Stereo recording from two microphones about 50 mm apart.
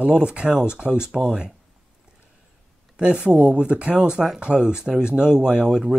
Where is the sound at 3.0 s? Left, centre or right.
Right.